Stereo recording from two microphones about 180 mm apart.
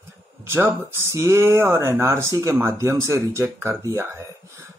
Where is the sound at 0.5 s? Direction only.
15° right (ahead or behind).